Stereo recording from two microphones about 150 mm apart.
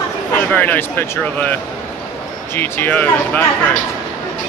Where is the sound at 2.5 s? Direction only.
15° left (ahead or behind).